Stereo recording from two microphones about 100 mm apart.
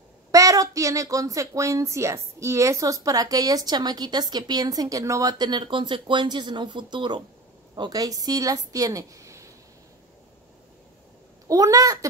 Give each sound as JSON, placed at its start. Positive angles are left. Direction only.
{"t": 0.3, "sound": "speech", "side_deg": -35}
{"t": 5.4, "sound": "a woman's voice", "side_deg": -50}
{"t": 11.4, "sound": "speech", "side_deg": -35}